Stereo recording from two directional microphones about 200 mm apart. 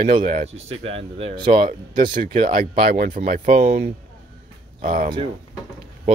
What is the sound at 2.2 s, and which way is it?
Speech, 40° right (ahead or behind).